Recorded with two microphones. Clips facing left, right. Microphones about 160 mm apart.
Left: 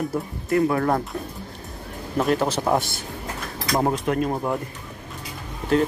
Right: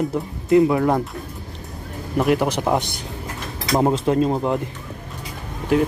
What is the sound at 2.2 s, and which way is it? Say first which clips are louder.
A man's voice: right 3 dB; 15° right (ahead or behind).